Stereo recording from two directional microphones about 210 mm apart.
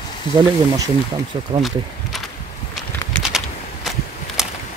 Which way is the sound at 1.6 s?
Centre (ahead or behind).